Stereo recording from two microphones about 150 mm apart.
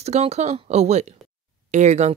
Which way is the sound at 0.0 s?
45° right (ahead or behind).